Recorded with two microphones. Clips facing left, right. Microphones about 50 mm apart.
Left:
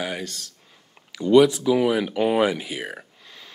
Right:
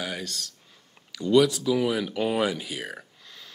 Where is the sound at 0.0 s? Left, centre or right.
Centre.